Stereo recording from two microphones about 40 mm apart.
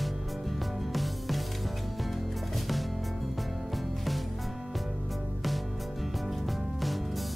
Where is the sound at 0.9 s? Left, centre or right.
Centre.